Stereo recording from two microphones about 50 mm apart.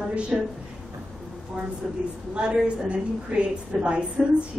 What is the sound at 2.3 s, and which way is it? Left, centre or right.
A woman's voice, right.